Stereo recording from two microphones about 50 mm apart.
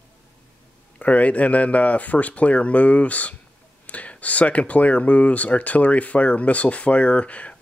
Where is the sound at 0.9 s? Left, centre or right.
Left.